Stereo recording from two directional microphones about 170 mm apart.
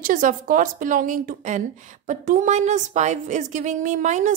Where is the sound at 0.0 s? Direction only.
50° right (ahead or behind).